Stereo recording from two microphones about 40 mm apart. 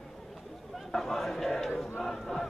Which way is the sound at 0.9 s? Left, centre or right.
Centre.